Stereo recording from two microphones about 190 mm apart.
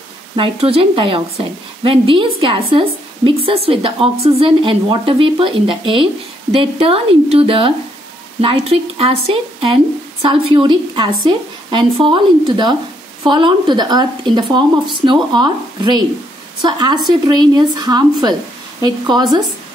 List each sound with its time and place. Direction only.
0.4 s a woman's voice: 30° right (ahead or behind)